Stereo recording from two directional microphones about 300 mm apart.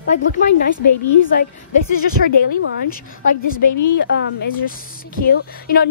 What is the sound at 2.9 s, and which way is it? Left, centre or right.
A woman's voice, left.